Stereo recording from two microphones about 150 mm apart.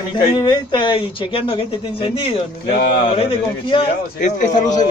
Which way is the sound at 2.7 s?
90° left.